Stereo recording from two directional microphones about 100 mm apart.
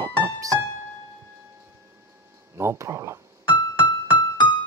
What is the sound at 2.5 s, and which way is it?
Speech, 30° right (ahead or behind).